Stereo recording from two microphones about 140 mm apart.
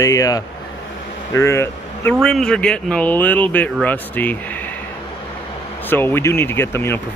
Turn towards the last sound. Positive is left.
turn(degrees=15)  # may be behind; listen again after turning